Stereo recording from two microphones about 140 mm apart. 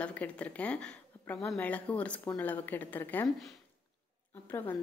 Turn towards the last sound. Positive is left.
turn(degrees=15)  # may be behind; listen again after turning